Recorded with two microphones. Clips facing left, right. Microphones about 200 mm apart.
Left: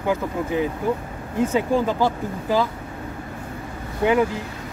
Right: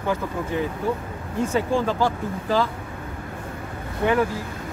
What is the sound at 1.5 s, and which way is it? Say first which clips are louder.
Speech: even; 15° left (ahead or behind).